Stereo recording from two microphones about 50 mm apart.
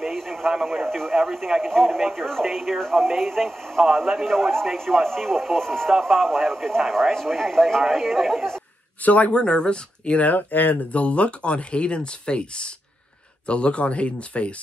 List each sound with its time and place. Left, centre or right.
0.0 s radio: centre
0.5 s speech: centre
9.0 s speech: left